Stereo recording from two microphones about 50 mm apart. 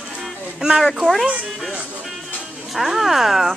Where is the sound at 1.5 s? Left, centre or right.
Centre.